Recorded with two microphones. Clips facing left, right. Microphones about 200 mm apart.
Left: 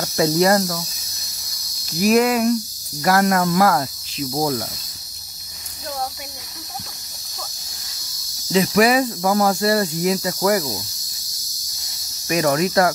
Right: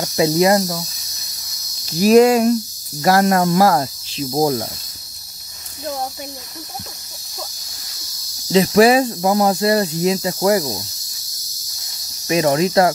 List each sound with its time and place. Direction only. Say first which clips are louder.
0.0 s cricket: right 2 dB; 20° right (ahead or behind)
1.9 s cricket: right 5 dB; 30° right (ahead or behind)
8.5 s cricket: right 4 dB; 30° right (ahead or behind)
12.3 s cricket: right 3 dB; 25° right (ahead or behind)